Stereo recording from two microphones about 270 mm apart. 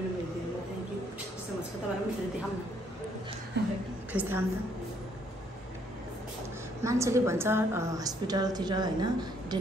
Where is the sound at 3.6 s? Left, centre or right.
Right.